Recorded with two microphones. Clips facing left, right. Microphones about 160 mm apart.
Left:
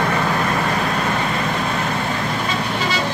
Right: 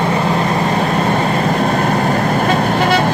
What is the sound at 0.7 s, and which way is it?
Vehicle, 35° right (ahead or behind).